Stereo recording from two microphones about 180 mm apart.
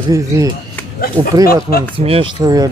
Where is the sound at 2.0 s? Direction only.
30° right (ahead or behind).